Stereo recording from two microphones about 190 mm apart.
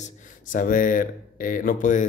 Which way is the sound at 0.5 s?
45° left (ahead or behind).